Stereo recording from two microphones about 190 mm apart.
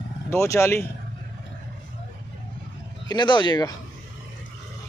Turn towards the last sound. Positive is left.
turn(degrees=20)  # may be behind; listen again after turning